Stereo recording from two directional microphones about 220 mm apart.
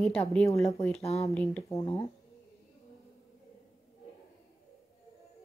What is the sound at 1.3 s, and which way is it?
Speech, 5° left (ahead or behind).